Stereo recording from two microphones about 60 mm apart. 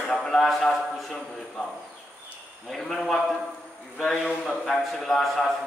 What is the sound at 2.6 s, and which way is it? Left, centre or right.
A man's voice, centre.